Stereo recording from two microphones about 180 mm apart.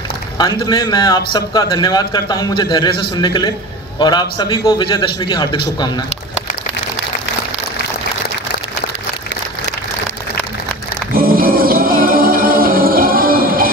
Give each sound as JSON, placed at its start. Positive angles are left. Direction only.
{"t": 0.4, "sound": "a man's voice", "side_deg": 20}
{"t": 11.1, "sound": "music", "side_deg": -55}